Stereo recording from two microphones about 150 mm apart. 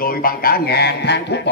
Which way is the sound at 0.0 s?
75° left (ahead or behind).